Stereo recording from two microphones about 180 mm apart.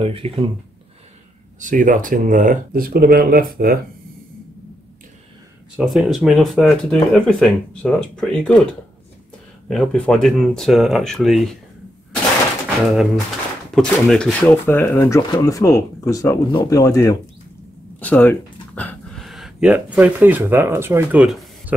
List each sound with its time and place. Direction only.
0.0 s speech: 30° right (ahead or behind)
1.6 s speech: 45° right (ahead or behind)
5.8 s speech: centre (ahead or behind)
9.7 s speech: 5° left (ahead or behind)
12.6 s speech: centre (ahead or behind)